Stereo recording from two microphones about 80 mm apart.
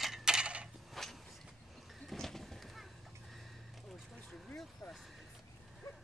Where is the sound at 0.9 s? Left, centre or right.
Centre.